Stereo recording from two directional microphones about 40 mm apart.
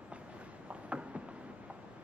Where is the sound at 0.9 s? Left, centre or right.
Right.